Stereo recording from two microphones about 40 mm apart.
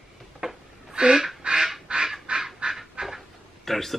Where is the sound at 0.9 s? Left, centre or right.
Centre.